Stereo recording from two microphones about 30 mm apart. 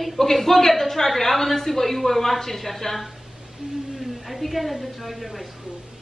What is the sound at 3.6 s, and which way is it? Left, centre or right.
Speech, right.